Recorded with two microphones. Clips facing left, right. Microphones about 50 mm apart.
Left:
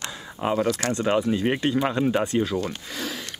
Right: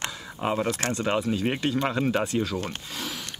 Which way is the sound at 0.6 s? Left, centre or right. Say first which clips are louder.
Left 3 dB; right.